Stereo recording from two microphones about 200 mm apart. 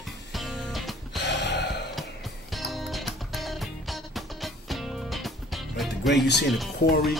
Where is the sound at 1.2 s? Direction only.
60° left (ahead or behind).